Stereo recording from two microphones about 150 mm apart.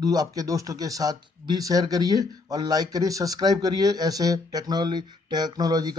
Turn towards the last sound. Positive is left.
turn(degrees=-25)  # may be behind; listen again after turning